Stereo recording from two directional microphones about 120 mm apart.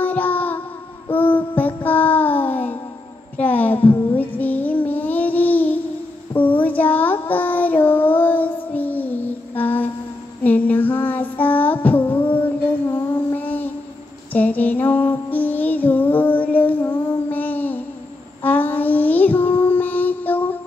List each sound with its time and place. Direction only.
0.0 s music: 15° left (ahead or behind)
1.0 s child singing: 15° left (ahead or behind)
14.3 s music: 15° left (ahead or behind)
18.4 s child singing: 15° left (ahead or behind)